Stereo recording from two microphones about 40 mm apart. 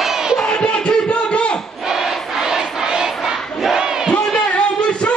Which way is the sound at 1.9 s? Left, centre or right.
Centre.